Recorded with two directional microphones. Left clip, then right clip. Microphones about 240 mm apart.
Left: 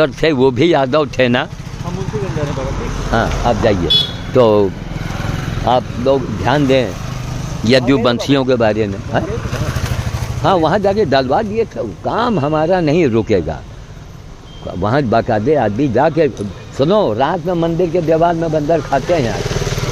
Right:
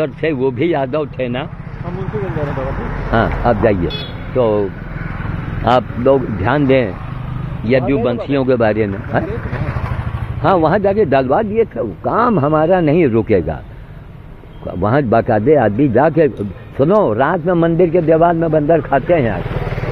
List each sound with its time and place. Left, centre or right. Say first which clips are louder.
0.0 s speech: left 4 dB; left
3.1 s speech: right 1 dB; centre
4.4 s speech: left 4 dB; left
5.7 s speech: right 1 dB; centre
7.6 s speech: left 2 dB; left
8.5 s speech: even; centre
10.4 s speech: even; centre
14.8 s speech: right 1 dB; centre